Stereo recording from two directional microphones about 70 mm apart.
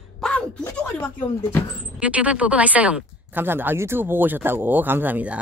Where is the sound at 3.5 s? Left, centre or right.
Right.